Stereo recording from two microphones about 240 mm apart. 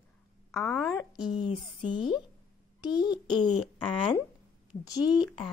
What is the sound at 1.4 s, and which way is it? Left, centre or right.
A child's voice, left.